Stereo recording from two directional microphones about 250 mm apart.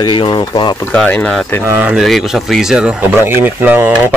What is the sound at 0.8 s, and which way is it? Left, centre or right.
Speech, centre.